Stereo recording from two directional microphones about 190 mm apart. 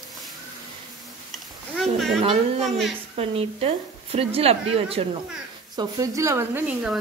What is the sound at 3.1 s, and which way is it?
Speech, 30° right (ahead or behind).